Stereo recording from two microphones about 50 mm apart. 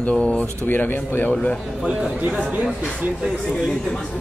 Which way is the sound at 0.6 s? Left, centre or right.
Left.